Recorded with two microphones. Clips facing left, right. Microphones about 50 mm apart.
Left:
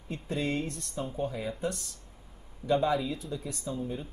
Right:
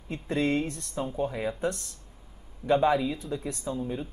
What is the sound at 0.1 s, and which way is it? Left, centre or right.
Speech, centre.